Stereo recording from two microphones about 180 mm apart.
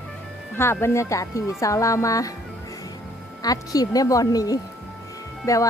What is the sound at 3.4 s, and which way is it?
A woman's voice, 20° left (ahead or behind).